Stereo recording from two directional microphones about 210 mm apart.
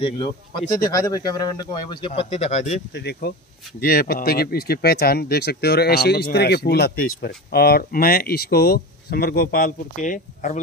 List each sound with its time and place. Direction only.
0.0 s speech: 25° left (ahead or behind)
2.9 s speech: 50° left (ahead or behind)